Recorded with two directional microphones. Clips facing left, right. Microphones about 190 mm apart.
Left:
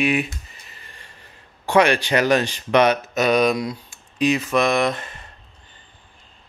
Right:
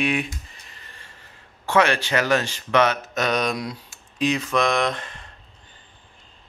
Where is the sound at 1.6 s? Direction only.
15° left (ahead or behind).